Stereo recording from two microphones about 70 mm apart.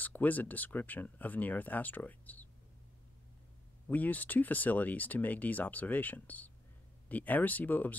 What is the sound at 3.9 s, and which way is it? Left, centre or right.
Speech, left.